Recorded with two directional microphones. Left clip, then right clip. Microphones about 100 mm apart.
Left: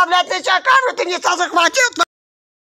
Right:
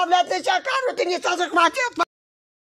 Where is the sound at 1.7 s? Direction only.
15° left (ahead or behind).